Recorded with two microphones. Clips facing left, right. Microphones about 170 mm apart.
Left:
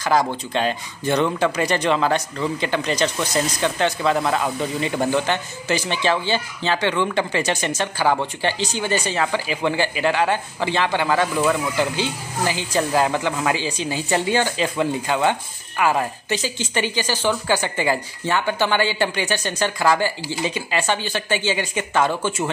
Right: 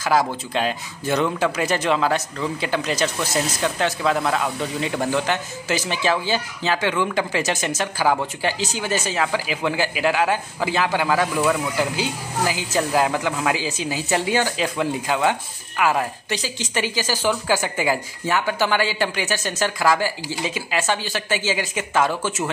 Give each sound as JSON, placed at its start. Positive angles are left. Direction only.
{"t": 0.0, "sound": "speech", "side_deg": -5}